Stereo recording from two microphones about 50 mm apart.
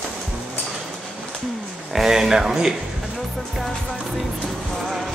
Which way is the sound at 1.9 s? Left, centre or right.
Centre.